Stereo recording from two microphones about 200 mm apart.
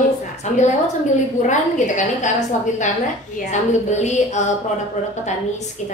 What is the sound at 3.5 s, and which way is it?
Speech, 35° left (ahead or behind).